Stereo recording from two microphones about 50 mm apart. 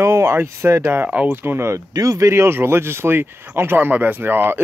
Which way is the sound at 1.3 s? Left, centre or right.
Right.